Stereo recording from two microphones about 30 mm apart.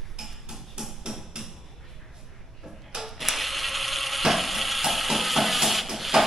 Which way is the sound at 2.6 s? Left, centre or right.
Centre.